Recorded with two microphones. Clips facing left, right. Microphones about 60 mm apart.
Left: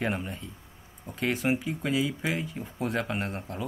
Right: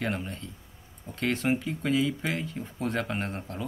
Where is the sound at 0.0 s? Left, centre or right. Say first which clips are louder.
Left 1 dB; centre.